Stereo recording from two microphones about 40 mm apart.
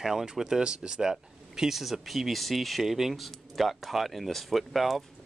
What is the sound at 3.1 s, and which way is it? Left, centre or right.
Speech, centre.